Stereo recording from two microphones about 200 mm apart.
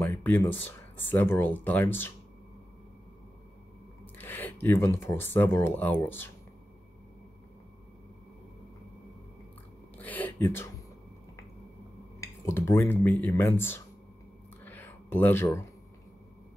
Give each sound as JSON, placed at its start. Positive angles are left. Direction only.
{"t": 0.0, "sound": "speech", "side_deg": 10}
{"t": 4.0, "sound": "speech", "side_deg": 10}
{"t": 9.9, "sound": "speech", "side_deg": 10}
{"t": 12.2, "sound": "speech", "side_deg": 15}
{"t": 14.6, "sound": "a sound", "side_deg": 10}